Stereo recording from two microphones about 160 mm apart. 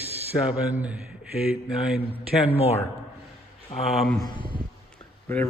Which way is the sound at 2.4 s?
40° left (ahead or behind).